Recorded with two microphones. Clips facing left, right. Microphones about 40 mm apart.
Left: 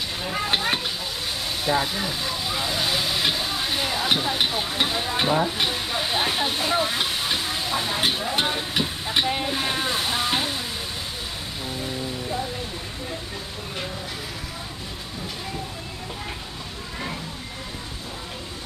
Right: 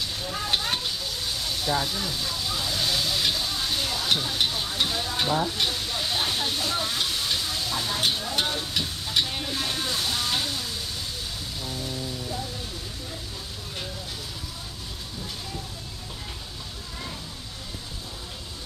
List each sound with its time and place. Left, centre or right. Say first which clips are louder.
0.2 s sizzle: left 5 dB; left
5.3 s speech: left 2 dB; left